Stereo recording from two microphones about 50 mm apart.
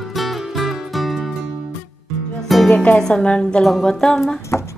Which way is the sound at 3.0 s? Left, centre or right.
Centre.